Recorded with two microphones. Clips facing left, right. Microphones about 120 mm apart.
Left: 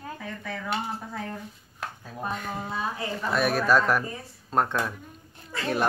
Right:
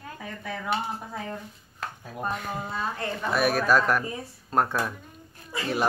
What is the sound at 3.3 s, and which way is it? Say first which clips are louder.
Speech: even; centre (ahead or behind).